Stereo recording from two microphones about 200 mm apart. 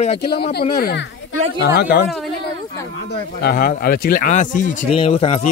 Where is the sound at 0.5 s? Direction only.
50° left (ahead or behind).